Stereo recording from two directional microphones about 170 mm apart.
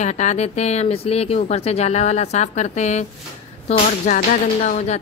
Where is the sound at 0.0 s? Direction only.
45° left (ahead or behind).